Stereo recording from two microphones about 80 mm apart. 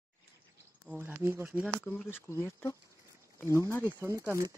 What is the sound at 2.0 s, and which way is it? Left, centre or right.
Speech, left.